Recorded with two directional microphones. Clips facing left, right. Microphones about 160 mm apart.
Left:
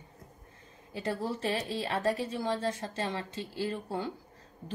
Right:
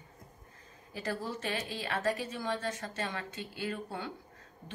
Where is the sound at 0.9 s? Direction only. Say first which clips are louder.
Left 3 dB; 25° left (ahead or behind).